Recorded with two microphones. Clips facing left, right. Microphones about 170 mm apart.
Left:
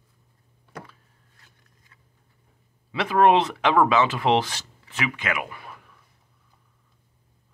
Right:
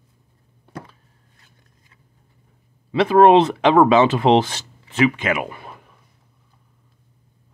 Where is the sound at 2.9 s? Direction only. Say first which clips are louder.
Right 7 dB; 30° right (ahead or behind).